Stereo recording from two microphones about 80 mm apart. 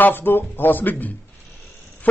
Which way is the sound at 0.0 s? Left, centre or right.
Left.